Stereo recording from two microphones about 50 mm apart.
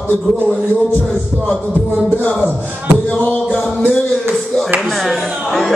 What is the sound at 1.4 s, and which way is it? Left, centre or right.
Speech, left.